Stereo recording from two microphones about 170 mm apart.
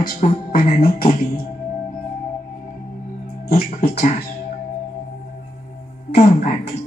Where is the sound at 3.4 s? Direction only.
65° left (ahead or behind).